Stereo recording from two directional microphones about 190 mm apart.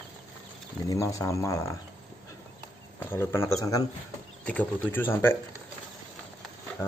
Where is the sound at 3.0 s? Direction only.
10° left (ahead or behind).